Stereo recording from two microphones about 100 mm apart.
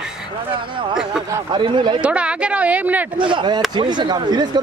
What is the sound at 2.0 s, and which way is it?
Speech, 10° right (ahead or behind).